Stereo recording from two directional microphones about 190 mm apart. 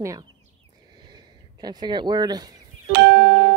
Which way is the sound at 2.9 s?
60° right (ahead or behind).